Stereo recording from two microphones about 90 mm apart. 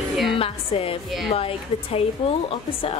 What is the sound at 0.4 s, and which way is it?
A woman's voice, 90° left.